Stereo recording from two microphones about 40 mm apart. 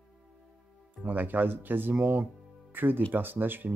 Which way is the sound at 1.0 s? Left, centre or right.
Right.